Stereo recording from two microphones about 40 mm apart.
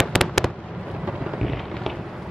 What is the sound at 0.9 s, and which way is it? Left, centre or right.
Thunder, centre.